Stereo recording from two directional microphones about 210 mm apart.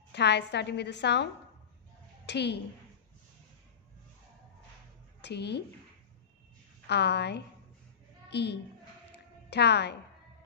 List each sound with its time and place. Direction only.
0.1 s a woman's voice: 55° left (ahead or behind)
5.2 s a woman's voice: 55° left (ahead or behind)
6.9 s a woman's voice: 55° left (ahead or behind)